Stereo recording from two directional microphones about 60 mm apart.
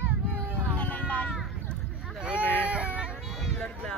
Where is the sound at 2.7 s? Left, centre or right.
Right.